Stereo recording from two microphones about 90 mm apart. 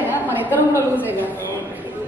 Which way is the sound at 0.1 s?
20° right (ahead or behind).